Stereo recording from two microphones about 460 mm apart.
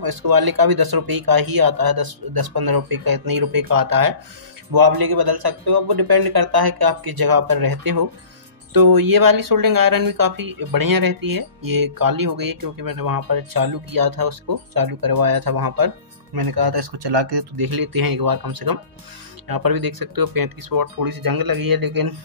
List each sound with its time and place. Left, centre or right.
0.0 s speech: right